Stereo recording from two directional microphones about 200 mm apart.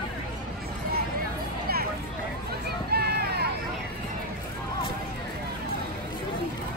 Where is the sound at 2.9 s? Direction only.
50° right (ahead or behind).